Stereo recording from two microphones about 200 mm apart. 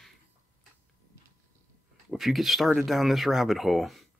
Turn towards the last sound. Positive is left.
turn(degrees=0)  # may be behind; listen again after turning